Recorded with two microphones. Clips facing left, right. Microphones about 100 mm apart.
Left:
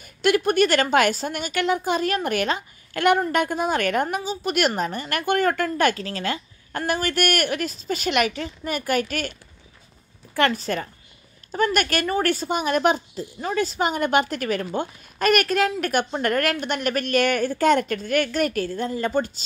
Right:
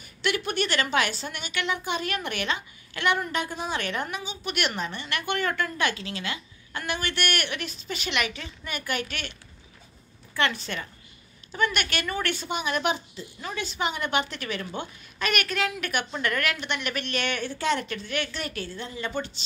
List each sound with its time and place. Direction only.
0.0 s a woman's voice: 45° left (ahead or behind)
10.3 s a woman's voice: 40° left (ahead or behind)